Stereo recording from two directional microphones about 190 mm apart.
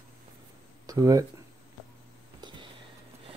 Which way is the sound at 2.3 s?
25° right (ahead or behind).